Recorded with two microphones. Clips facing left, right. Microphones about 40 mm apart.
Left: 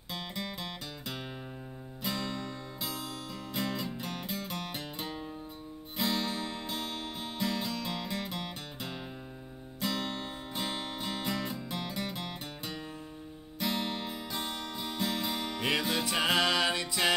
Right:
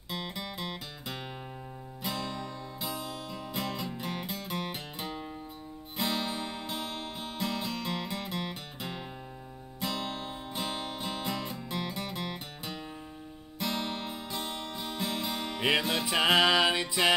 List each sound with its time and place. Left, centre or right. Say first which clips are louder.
0.1 s music: right 1 dB; centre
15.4 s music: right 5 dB; centre